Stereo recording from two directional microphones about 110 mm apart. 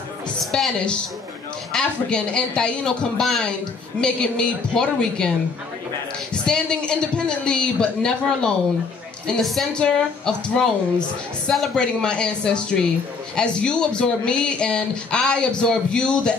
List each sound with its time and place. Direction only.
0.5 s speech: 5° left (ahead or behind)
6.4 s speech: 10° left (ahead or behind)